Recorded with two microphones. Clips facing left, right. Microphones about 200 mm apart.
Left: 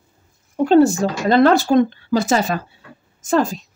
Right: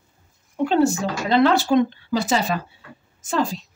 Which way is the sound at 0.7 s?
40° left (ahead or behind).